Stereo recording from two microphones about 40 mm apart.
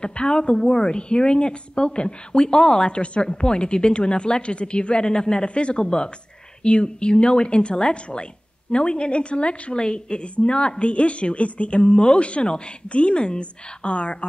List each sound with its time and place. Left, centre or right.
0.0 s a woman's voice: left